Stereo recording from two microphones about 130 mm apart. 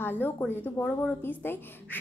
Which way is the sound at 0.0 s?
15° left (ahead or behind).